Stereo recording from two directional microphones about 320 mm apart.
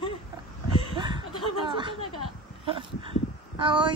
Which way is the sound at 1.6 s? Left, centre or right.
Centre.